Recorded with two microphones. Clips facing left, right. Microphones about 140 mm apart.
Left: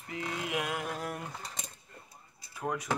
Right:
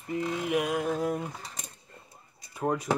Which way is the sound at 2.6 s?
30° right (ahead or behind).